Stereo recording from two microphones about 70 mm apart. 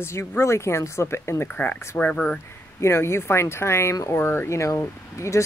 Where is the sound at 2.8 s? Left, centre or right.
Left.